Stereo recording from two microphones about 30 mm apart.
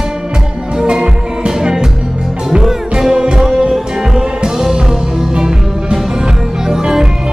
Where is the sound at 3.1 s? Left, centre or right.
Centre.